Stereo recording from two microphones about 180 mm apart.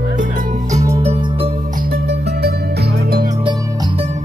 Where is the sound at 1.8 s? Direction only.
60° right (ahead or behind).